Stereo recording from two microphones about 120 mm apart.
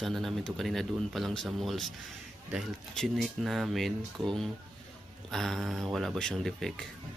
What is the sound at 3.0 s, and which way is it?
Speech, centre (ahead or behind).